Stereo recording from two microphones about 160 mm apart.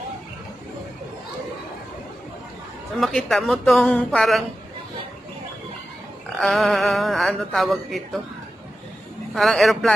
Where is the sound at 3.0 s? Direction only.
Centre (ahead or behind).